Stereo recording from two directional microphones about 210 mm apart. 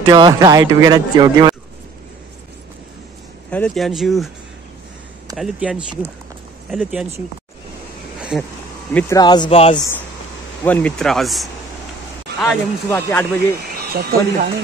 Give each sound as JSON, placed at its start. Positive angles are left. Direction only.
{"t": 0.1, "sound": "speech", "side_deg": -15}
{"t": 3.4, "sound": "speech", "side_deg": 5}
{"t": 5.4, "sound": "speech", "side_deg": -5}
{"t": 8.9, "sound": "speech", "side_deg": 20}
{"t": 10.6, "sound": "speech", "side_deg": 5}
{"t": 13.7, "sound": "speech", "side_deg": -50}